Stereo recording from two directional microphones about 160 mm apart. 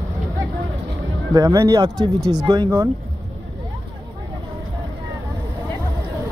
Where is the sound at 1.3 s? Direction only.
20° right (ahead or behind).